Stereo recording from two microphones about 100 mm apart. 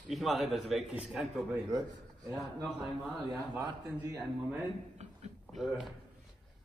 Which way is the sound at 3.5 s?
40° right (ahead or behind).